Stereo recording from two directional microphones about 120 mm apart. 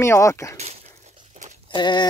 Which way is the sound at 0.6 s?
70° right (ahead or behind).